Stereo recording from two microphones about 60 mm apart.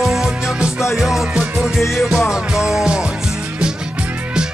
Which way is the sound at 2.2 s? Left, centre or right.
Centre.